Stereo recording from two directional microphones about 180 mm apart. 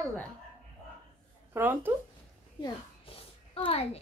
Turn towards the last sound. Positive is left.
turn(degrees=30)  # may be behind; listen again after turning